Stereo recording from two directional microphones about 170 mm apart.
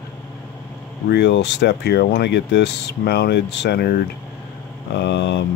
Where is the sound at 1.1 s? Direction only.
85° left.